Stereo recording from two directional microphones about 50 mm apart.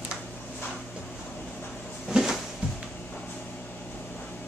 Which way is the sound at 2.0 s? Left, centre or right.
Centre.